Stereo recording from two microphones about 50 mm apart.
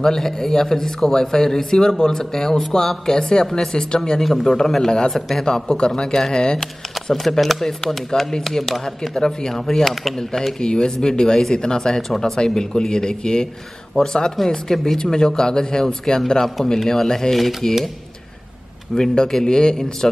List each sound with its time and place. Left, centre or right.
0.0 s speech: centre
4.2 s speech: centre
6.6 s speech: centre
8.8 s speech: centre
18.9 s speech: centre